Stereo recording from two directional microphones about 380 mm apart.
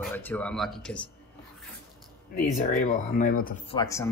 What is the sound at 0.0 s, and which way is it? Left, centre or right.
Speech, centre.